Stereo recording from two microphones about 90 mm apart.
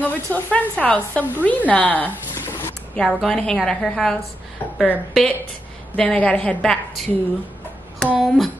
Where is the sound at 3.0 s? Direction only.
Centre (ahead or behind).